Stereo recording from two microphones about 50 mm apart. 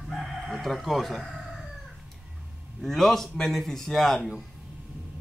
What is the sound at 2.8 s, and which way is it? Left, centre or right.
A man's voice, centre.